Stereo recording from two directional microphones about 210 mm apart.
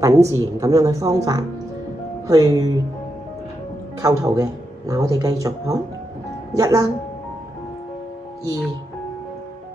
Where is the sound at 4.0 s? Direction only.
15° right (ahead or behind).